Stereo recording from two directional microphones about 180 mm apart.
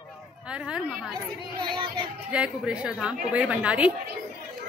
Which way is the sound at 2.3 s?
5° right (ahead or behind).